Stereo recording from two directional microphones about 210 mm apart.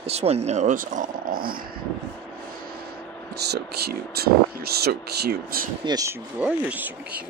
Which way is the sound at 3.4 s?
50° right (ahead or behind).